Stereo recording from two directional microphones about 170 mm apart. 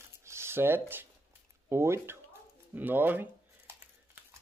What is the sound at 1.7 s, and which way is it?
Speech, 15° right (ahead or behind).